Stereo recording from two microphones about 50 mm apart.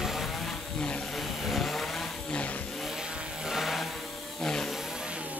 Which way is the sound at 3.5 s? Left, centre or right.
Centre.